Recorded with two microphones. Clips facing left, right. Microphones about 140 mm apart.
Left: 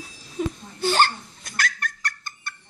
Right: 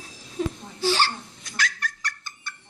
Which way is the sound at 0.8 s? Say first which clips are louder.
Left 3 dB; 55° left (ahead or behind).